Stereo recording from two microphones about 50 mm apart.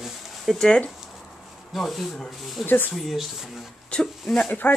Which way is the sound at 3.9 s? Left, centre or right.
Left.